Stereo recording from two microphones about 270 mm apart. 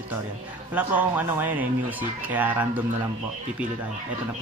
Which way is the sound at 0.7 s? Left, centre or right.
Centre.